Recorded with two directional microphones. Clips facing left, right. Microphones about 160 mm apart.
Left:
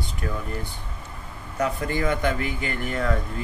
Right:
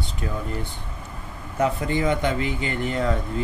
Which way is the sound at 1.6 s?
20° right (ahead or behind).